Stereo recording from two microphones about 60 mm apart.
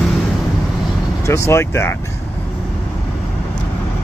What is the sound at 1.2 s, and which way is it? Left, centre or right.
Speech, left.